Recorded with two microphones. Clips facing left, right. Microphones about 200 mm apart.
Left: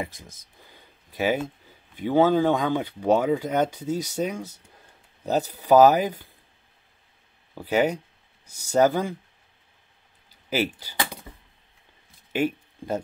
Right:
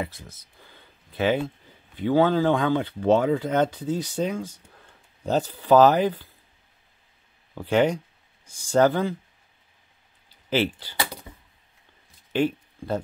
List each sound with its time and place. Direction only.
0.0 s speech: 15° left (ahead or behind)
7.5 s speech: 10° left (ahead or behind)
10.5 s speech: 10° left (ahead or behind)
12.3 s a sound: 10° left (ahead or behind)